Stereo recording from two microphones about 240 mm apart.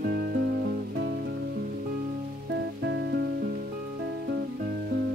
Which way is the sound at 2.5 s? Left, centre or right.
Right.